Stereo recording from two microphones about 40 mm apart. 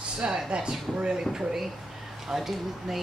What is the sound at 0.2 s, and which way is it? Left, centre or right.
Speech, right.